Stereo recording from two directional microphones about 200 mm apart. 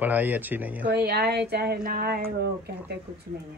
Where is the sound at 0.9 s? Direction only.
55° right (ahead or behind).